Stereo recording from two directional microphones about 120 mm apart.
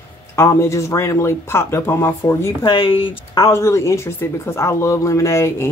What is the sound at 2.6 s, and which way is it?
Speech, 45° left (ahead or behind).